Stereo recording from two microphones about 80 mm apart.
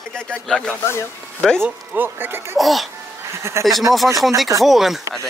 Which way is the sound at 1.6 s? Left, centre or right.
Right.